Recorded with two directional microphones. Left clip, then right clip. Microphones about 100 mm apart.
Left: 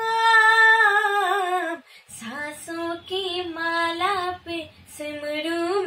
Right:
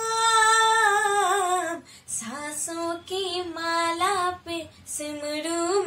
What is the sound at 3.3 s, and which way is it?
Music, 5° right (ahead or behind).